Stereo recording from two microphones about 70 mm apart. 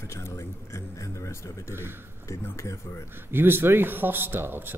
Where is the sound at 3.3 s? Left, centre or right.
Right.